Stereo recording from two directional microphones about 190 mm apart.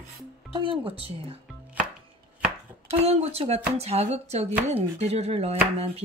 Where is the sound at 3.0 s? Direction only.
35° right (ahead or behind).